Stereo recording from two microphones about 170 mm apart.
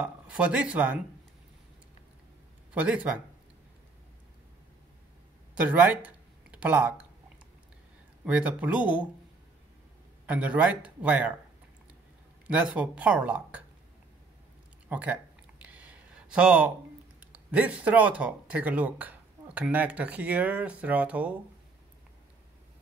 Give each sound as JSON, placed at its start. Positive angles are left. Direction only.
{"t": 0.0, "sound": "speech", "side_deg": -5}
{"t": 2.7, "sound": "speech", "side_deg": -10}
{"t": 5.6, "sound": "speech", "side_deg": -10}
{"t": 8.3, "sound": "speech", "side_deg": -10}
{"t": 10.2, "sound": "speech", "side_deg": -5}
{"t": 12.4, "sound": "speech", "side_deg": -10}
{"t": 14.9, "sound": "speech", "side_deg": -10}
{"t": 15.6, "sound": "a sound", "side_deg": -10}
{"t": 17.2, "sound": "speech", "side_deg": -10}